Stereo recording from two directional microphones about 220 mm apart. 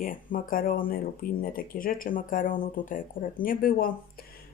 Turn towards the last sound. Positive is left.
turn(degrees=40)  # may be behind; listen again after turning